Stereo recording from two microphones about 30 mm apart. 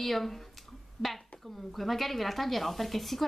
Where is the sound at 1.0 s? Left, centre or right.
Right.